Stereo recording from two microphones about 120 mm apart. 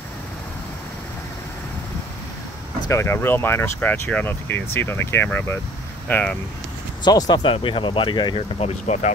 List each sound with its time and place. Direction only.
2.9 s speech: 20° left (ahead or behind)
7.1 s speech: 35° left (ahead or behind)
8.4 s speech: 60° left (ahead or behind)